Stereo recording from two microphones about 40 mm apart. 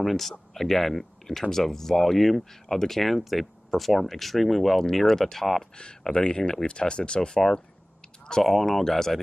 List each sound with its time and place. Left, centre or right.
0.0 s speech: centre
5.8 s speech: left
8.5 s speech: centre